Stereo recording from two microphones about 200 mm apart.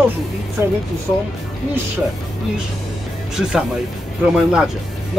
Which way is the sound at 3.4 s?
5° right (ahead or behind).